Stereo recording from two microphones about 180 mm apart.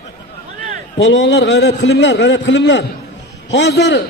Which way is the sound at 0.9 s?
90° left.